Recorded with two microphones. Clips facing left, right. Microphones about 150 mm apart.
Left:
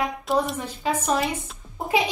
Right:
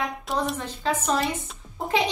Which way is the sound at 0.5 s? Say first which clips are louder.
Left 1 dB; 10° left (ahead or behind).